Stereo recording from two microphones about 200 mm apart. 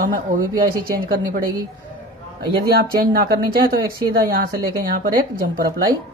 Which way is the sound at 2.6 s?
50° right (ahead or behind).